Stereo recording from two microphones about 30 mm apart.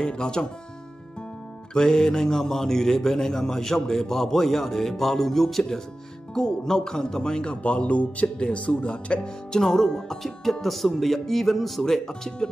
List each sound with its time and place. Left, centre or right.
0.0 s speech: left
1.7 s speech: left
7.6 s speech: left
8.5 s speech: left
9.5 s speech: centre
10.6 s speech: centre
12.1 s speech: left